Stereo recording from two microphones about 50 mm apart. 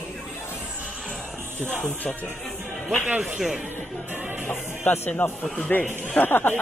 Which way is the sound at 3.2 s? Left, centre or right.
Centre.